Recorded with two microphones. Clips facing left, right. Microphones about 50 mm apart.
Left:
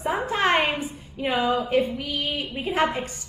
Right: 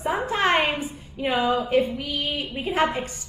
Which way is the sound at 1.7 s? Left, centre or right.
Centre.